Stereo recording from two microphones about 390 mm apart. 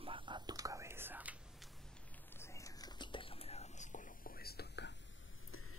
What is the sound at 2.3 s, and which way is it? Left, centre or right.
Whispering, centre.